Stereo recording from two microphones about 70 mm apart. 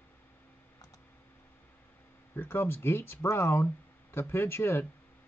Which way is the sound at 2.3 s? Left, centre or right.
Left.